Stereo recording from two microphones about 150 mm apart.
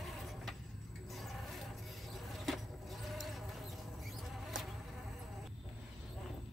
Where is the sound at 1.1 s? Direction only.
Centre (ahead or behind).